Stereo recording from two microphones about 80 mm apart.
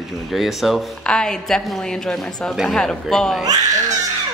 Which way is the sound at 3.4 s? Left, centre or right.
Right.